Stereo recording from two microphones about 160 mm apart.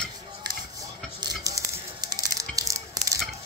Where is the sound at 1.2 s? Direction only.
20° right (ahead or behind).